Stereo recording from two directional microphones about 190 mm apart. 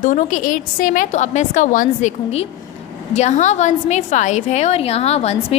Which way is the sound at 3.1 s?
40° left (ahead or behind).